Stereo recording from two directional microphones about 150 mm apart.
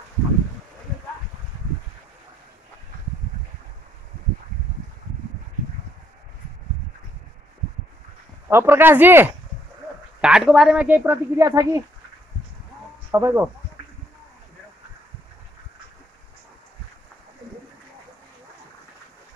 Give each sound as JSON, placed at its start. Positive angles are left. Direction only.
{"t": 8.5, "sound": "speech", "side_deg": -15}
{"t": 13.1, "sound": "speech", "side_deg": -15}